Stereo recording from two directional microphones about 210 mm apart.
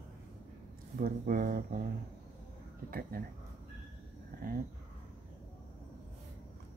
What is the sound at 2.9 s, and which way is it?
Speech, 45° right (ahead or behind).